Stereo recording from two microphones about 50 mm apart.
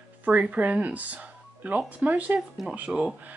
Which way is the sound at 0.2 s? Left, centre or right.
Right.